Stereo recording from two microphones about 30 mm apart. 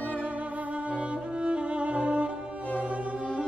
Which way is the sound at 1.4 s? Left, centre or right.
Right.